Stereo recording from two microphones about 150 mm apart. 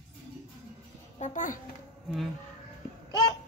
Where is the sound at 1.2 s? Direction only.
55° left (ahead or behind).